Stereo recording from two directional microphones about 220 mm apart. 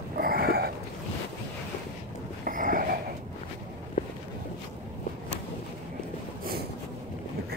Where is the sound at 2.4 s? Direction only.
40° right (ahead or behind).